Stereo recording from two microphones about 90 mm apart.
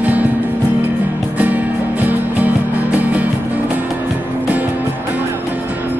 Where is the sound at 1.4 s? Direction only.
20° right (ahead or behind).